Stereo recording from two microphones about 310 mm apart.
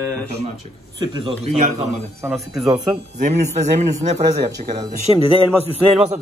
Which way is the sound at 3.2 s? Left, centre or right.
Right.